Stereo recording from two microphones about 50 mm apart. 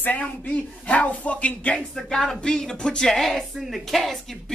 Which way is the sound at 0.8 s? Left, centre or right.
Left.